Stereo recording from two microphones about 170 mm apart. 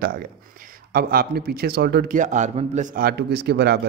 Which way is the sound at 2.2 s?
45° right (ahead or behind).